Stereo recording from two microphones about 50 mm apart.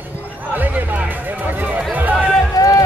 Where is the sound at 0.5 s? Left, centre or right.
Right.